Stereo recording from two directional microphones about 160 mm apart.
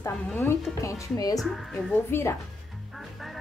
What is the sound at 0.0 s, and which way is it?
Speech, 15° left (ahead or behind).